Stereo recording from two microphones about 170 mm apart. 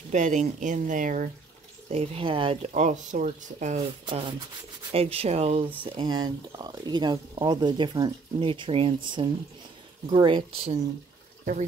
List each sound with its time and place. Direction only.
0.1 s speech: 45° right (ahead or behind)
1.9 s speech: 35° right (ahead or behind)
2.7 s speech: 45° right (ahead or behind)
4.0 s speech: 30° right (ahead or behind)
5.9 s speech: 25° right (ahead or behind)